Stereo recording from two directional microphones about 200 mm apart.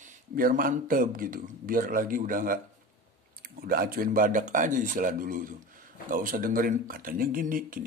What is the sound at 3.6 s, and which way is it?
Speech, 45° right (ahead or behind).